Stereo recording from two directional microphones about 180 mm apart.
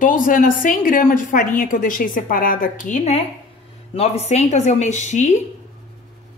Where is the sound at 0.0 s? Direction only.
50° left (ahead or behind).